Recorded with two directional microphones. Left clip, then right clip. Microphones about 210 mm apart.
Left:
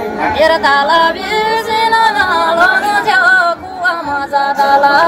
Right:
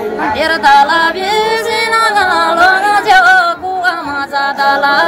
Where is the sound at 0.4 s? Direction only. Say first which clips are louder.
Right 2 dB; 55° right (ahead or behind).